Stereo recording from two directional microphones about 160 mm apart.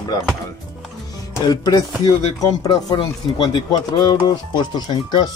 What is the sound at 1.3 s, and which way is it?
Speech, 25° left (ahead or behind).